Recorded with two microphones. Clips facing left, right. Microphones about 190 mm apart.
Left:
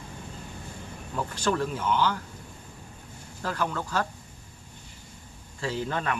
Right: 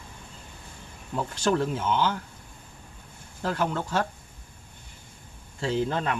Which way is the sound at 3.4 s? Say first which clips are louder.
Right 3 dB; 25° right (ahead or behind).